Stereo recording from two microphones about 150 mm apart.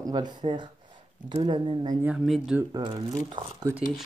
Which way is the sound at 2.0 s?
5° right (ahead or behind).